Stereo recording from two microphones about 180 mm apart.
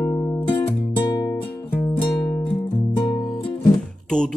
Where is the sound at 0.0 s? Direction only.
15° left (ahead or behind).